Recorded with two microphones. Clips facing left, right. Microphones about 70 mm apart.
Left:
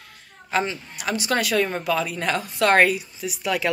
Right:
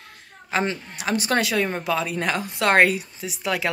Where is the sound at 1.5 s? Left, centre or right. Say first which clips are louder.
Left 1 dB; right.